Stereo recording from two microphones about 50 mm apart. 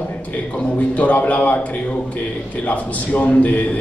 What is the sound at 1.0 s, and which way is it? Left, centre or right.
Speech, left.